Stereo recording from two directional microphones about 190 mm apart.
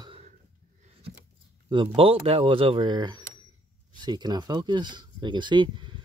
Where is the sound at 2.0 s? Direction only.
30° right (ahead or behind).